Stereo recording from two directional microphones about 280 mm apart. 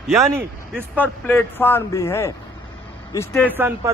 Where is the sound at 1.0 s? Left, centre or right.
Centre.